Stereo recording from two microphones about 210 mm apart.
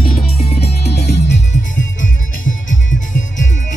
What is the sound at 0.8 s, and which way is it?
Music, 50° left (ahead or behind).